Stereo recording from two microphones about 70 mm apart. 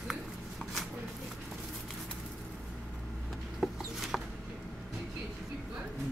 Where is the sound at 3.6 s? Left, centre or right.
Centre.